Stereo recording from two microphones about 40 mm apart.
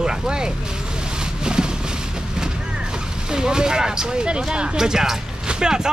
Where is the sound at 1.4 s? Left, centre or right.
Right.